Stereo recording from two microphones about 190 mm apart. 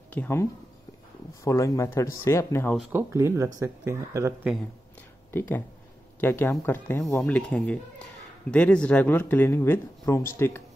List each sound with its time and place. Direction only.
0.1 s speech: 10° left (ahead or behind)
2.9 s speech: 10° right (ahead or behind)
5.3 s speech: 10° left (ahead or behind)